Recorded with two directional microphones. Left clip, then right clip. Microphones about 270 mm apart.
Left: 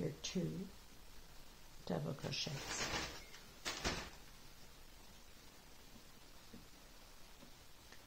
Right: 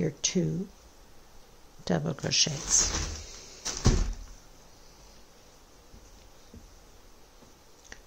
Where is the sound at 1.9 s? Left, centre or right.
Right.